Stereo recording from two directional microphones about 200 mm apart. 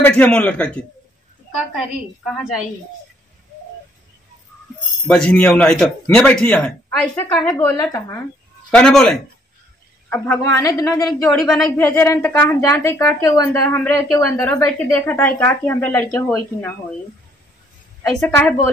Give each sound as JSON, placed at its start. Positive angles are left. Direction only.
{"t": 0.0, "sound": "a woman's voice", "side_deg": 5}
{"t": 5.0, "sound": "a woman's voice", "side_deg": 5}
{"t": 8.6, "sound": "a man's voice", "side_deg": 5}
{"t": 11.1, "sound": "a woman's voice", "side_deg": 5}
{"t": 18.2, "sound": "a woman's voice", "side_deg": 10}